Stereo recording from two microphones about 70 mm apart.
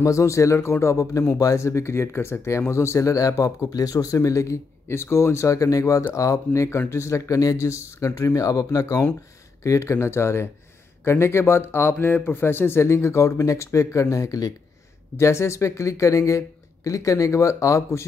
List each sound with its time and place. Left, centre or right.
0.0 s speech: left
15.1 s speech: left